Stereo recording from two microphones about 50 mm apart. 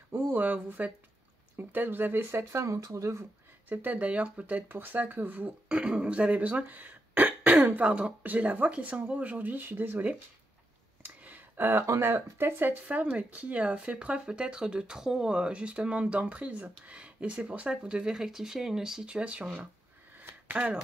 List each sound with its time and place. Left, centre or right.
0.1 s speech: right
2.5 s speech: right
3.6 s speech: right
4.6 s speech: right
5.8 s speech: centre; by 7.8 s right
7.8 s speech: right
11.5 s speech: right
13.0 s speech: right; by 15.3 s centre
15.3 s speech: right
19.0 s speech: right